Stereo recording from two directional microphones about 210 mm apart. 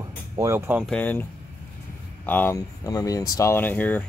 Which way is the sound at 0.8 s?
5° left (ahead or behind).